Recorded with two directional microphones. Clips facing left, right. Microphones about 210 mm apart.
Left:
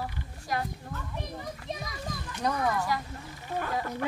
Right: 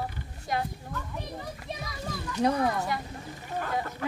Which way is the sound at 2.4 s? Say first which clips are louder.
Right 3 dB; 30° right (ahead or behind).